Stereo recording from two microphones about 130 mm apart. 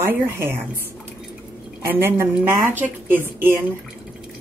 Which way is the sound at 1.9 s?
20° right (ahead or behind).